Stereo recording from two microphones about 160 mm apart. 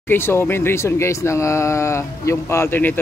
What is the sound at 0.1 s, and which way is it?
Speech, 15° left (ahead or behind).